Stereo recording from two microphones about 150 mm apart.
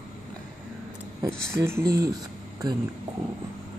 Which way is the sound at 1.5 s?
15° right (ahead or behind).